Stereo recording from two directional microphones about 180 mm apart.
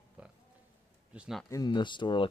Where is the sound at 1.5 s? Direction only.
25° left (ahead or behind).